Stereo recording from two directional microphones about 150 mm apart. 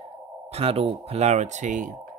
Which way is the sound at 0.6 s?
40° right (ahead or behind).